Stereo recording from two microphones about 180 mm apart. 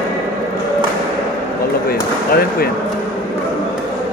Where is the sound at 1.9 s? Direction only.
55° left (ahead or behind).